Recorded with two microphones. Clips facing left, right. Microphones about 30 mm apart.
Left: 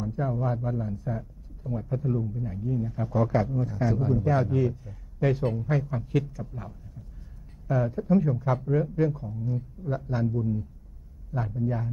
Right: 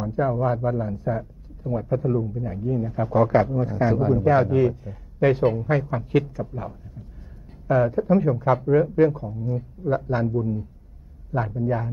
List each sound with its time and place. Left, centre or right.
0.0 s speech: right